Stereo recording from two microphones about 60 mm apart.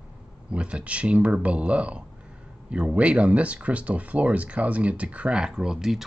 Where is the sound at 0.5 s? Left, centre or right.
Centre.